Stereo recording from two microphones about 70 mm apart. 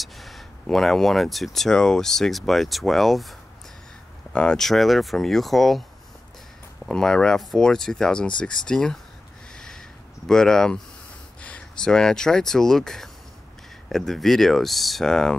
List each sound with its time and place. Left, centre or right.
0.0 s speech: centre
4.3 s speech: centre
6.9 s speech: centre
9.6 s a sound: centre
11.4 s speech: centre